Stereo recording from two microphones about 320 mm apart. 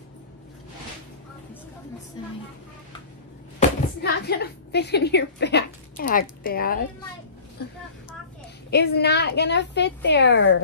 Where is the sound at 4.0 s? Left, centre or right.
Left.